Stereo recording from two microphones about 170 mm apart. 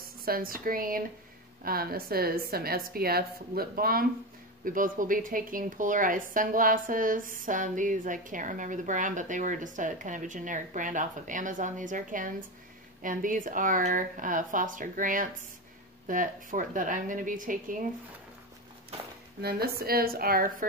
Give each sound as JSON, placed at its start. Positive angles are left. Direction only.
{"t": 0.2, "sound": "a woman's voice", "side_deg": -60}
{"t": 19.4, "sound": "a woman's voice", "side_deg": -65}